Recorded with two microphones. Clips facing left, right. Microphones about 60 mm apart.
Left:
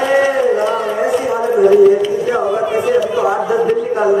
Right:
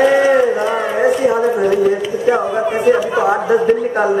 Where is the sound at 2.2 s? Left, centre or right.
Centre.